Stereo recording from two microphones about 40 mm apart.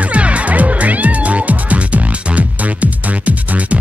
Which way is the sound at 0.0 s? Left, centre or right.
Right.